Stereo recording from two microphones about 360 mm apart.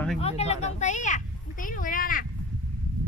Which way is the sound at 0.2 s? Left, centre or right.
Centre.